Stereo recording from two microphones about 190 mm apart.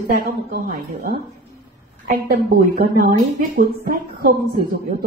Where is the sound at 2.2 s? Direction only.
55° right (ahead or behind).